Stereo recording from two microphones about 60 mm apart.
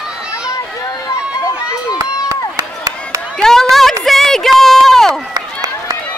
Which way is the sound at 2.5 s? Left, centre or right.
Right.